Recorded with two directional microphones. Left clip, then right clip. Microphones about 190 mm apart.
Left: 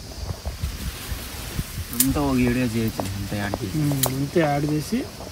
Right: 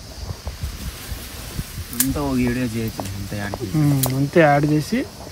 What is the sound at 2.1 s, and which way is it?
Speech, 50° left (ahead or behind).